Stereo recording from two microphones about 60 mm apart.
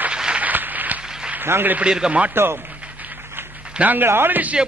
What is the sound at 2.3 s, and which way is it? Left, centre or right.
Speech, right.